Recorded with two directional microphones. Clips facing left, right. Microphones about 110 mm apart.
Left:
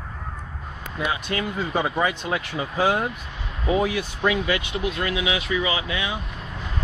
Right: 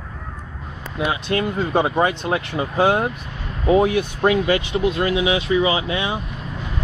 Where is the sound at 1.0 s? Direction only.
30° right (ahead or behind).